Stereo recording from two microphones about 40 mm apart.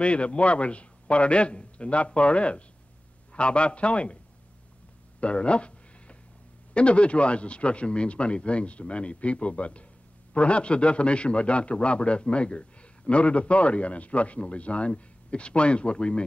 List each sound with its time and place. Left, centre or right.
0.0 s a man's voice: left
5.2 s a sound: left
6.7 s a man's voice: left